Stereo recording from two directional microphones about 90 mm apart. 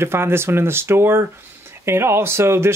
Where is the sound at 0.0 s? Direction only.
25° right (ahead or behind).